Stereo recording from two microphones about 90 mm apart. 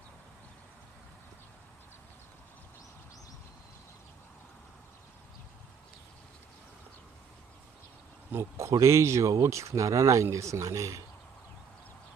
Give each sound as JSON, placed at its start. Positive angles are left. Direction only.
{"t": 8.3, "sound": "speech", "side_deg": -30}